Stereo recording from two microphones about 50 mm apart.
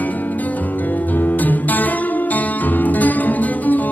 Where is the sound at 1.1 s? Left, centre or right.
Left.